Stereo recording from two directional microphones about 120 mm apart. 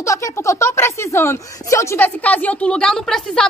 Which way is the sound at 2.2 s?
10° left (ahead or behind).